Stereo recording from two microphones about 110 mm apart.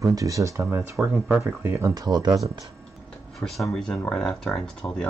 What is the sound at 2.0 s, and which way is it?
Speech, 40° right (ahead or behind).